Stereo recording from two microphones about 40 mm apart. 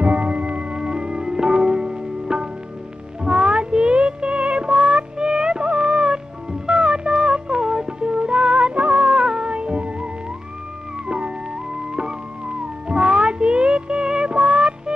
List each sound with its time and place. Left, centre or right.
0.0 s music: right; by 7.9 s centre
8.0 s music: right
11.1 s music: right